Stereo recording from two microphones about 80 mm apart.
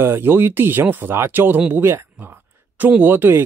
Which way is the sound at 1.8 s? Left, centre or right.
Right.